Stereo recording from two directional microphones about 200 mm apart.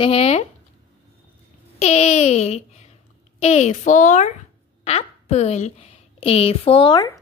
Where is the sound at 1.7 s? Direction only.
35° left (ahead or behind).